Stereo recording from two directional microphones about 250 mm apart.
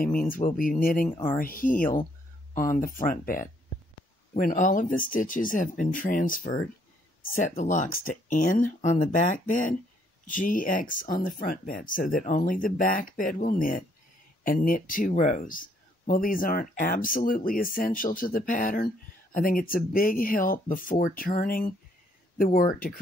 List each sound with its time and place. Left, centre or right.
0.0 s speech: left